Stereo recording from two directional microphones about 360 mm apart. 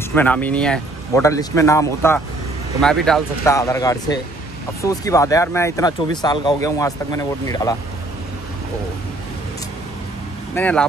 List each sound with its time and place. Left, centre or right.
0.1 s speech: centre
10.5 s speech: centre